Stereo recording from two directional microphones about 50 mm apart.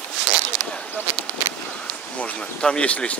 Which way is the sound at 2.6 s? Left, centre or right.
Centre.